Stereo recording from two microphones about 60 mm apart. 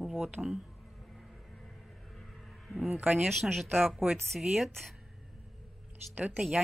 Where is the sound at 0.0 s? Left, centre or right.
Centre.